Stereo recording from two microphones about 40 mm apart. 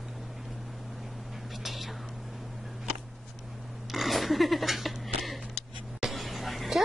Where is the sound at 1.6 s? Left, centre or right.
Centre.